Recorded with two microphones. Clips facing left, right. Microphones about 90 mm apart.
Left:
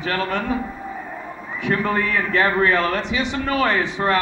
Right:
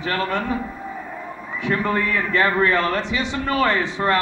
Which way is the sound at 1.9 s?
25° left (ahead or behind).